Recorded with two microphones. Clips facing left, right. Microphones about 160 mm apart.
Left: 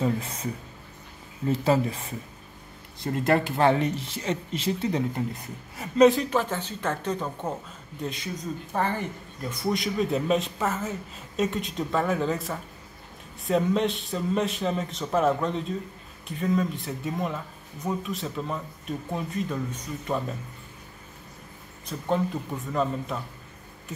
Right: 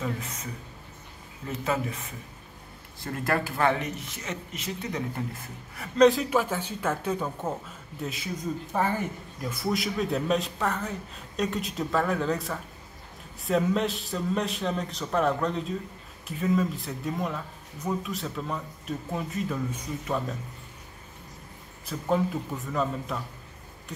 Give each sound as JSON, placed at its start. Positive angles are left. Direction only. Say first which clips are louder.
{"t": 0.0, "sound": "speech", "louder": "left 6 dB", "side_deg": 30}
{"t": 1.5, "sound": "speech", "louder": "left 6 dB", "side_deg": 30}
{"t": 5.1, "sound": "speech", "louder": "left 4 dB", "side_deg": 20}
{"t": 5.9, "sound": "speech", "louder": "left 1 dB", "side_deg": 0}
{"t": 21.8, "sound": "speech", "louder": "even", "side_deg": -5}